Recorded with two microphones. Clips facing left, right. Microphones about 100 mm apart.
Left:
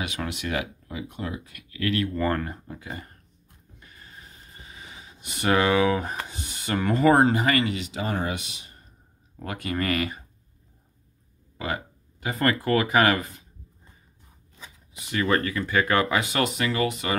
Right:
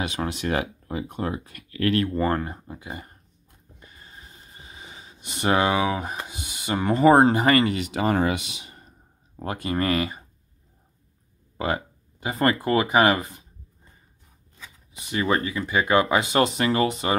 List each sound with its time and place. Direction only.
0.0 s speech: 30° right (ahead or behind)
2.1 s speech: 20° right (ahead or behind)
4.6 s speech: 25° right (ahead or behind); by 8.8 s 90° right
9.4 s speech: 30° right (ahead or behind)
11.5 s speech: 35° right (ahead or behind)
15.0 s speech: 20° right (ahead or behind)